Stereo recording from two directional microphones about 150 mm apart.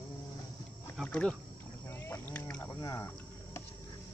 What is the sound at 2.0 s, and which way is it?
Boat, 10° left (ahead or behind).